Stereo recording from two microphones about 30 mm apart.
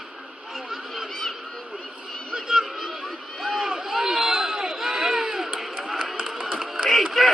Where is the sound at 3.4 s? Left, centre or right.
Centre.